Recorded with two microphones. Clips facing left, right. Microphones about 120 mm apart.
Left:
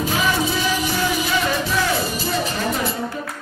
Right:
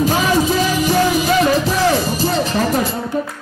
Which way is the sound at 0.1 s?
40° right (ahead or behind).